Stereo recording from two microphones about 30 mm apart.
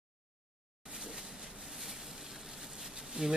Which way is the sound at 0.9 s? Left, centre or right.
Right.